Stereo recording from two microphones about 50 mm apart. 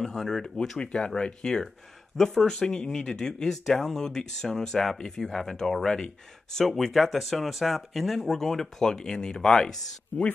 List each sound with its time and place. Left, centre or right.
0.0 s speech: centre
10.1 s speech: left